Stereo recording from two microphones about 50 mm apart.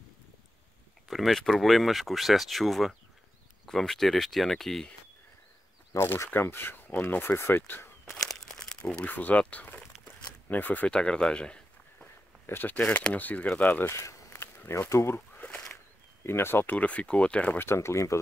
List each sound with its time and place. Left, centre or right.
1.0 s speech: centre
5.9 s speech: left
6.3 s speech: left
8.0 s a sound: centre
8.6 s crumpling: centre
9.0 s speech: left
10.9 s a sound: centre
12.4 s speech: left
12.7 s speech: left
13.8 s a sound: left
14.7 s speech: left
16.3 s speech: left
16.7 s speech: left
17.6 s speech: left